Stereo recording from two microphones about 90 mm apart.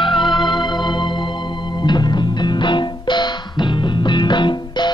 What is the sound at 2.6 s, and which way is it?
Music, 60° left (ahead or behind).